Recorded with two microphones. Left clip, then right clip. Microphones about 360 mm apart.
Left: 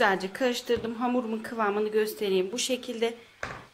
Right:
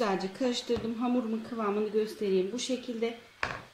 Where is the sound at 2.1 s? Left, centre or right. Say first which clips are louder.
Left 2 dB; left.